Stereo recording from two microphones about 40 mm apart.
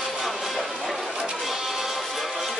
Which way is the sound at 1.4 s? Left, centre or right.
Centre.